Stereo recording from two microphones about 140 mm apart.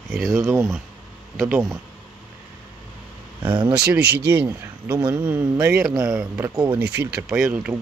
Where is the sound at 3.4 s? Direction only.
35° right (ahead or behind).